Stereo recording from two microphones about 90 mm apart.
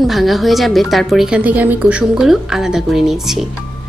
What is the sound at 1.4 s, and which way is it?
A woman's voice, 15° right (ahead or behind).